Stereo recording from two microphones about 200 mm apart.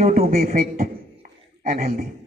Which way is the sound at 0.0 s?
35° right (ahead or behind).